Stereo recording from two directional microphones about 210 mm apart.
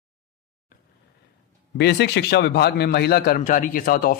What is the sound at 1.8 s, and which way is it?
A man's voice, 55° left (ahead or behind).